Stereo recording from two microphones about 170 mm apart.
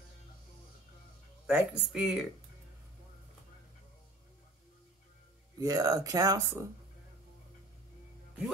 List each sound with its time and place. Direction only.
1.5 s speech: 10° right (ahead or behind)
5.6 s speech: 20° right (ahead or behind)